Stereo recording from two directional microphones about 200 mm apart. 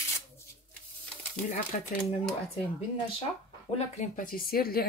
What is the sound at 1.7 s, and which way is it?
Speech, 40° left (ahead or behind).